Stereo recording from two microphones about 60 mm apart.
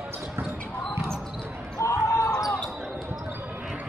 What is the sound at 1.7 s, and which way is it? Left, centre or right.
Basketball bounce, left.